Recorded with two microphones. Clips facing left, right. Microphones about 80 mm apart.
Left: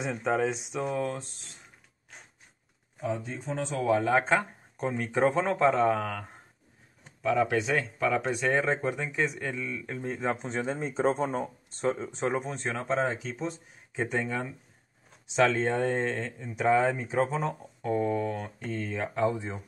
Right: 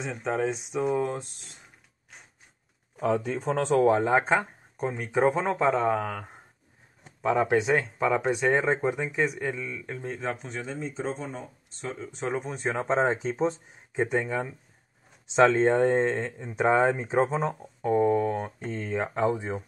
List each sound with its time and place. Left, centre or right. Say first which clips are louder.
0.1 s speech: even; centre
0.9 s speech: right 3 dB; right
3.0 s speech: right 7 dB; right
3.8 s speech: right 1 dB; right
4.2 s speech: right 1 dB; centre
7.2 s speech: right 2 dB; right; by 10.3 s centre
10.3 s speech: left 4 dB; left
10.6 s speech: left 8 dB; left
12.0 s speech: left 3 dB; left
12.3 s speech: even; centre
12.7 s speech: right 4 dB; right
14.1 s speech: right 1 dB; centre
15.2 s speech: right 5 dB; right